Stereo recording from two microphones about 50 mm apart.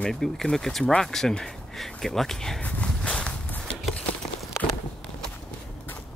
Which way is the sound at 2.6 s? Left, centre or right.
Left.